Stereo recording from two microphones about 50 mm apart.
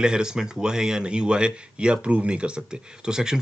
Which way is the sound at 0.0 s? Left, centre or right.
Centre.